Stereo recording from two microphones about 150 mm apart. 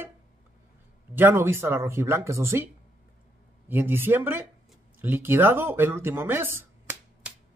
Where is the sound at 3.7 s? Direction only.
15° right (ahead or behind).